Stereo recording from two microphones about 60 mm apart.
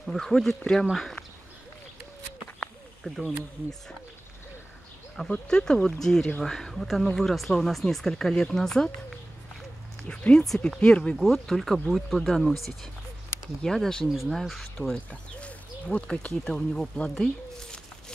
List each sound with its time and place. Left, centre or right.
0.0 s speech: centre
3.0 s speech: centre
5.1 s speech: centre
11.1 s speech: centre
14.0 s speech: centre
15.0 s speech: left